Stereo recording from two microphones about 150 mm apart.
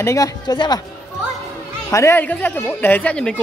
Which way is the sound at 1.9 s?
15° left (ahead or behind).